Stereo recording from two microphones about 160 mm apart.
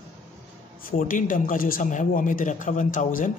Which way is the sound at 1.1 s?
55° left (ahead or behind).